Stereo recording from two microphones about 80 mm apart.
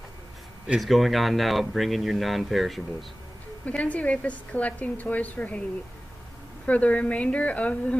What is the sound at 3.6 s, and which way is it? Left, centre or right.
A woman's voice, centre.